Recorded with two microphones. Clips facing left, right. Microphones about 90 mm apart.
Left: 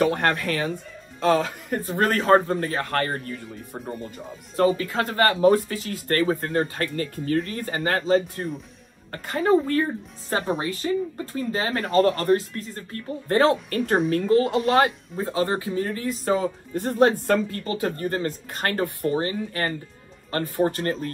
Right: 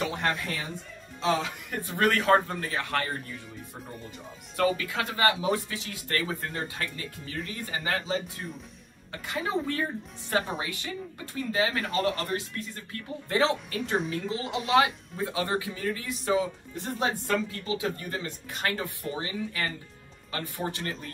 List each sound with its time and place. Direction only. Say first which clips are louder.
0.0 s speech: left 8 dB; 55° left (ahead or behind)
2.0 s speech: left 4 dB; 35° left (ahead or behind); by 3.3 s 50° left (ahead or behind)
4.6 s speech: left 6 dB; 35° left (ahead or behind)
15.1 s speech: left 4 dB; 30° left (ahead or behind); by 21.1 s 45° left (ahead or behind)